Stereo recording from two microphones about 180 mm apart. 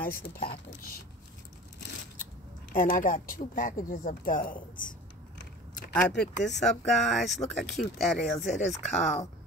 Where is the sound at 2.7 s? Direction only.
50° left (ahead or behind).